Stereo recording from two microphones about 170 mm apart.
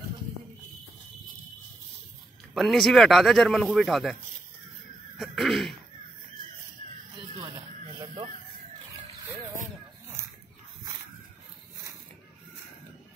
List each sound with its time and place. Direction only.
2.5 s speech: centre (ahead or behind)
5.1 s cough: centre (ahead or behind)
7.4 s a sound: 20° right (ahead or behind)